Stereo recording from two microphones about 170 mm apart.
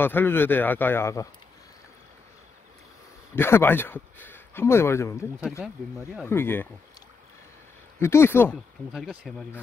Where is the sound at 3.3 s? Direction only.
15° left (ahead or behind).